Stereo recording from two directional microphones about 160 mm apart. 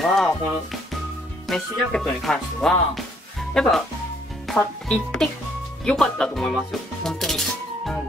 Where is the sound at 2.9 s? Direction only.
Centre (ahead or behind).